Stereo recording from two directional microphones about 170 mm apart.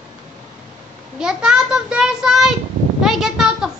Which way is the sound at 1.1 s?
5° right (ahead or behind).